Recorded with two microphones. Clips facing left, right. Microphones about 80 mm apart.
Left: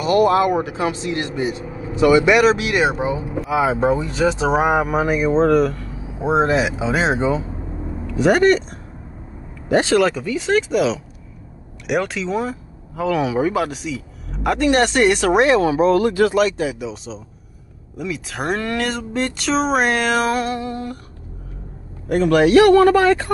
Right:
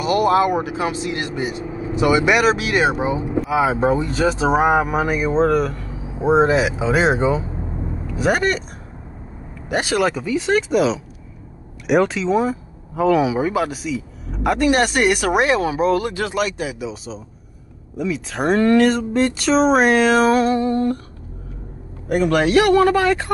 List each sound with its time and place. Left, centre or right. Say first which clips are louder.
0.0 s speech: left 1 dB; centre
9.7 s speech: left 4 dB; centre
16.5 s speech: left 3 dB; centre
22.1 s a man's voice: left 3 dB; centre